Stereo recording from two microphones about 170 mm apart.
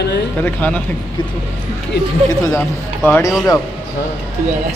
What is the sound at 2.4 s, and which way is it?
Speech, 10° left (ahead or behind).